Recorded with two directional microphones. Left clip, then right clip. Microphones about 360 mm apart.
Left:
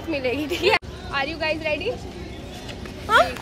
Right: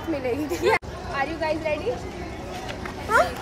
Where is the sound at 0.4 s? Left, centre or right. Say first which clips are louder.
Left 2 dB; centre.